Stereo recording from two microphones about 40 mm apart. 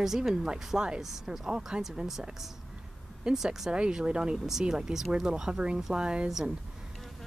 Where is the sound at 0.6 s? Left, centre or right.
Centre.